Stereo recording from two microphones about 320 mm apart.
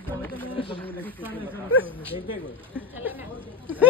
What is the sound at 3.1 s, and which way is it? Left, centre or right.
Speech, centre.